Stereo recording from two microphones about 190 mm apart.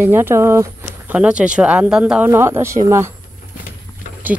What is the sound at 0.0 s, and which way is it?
Speech, 10° right (ahead or behind).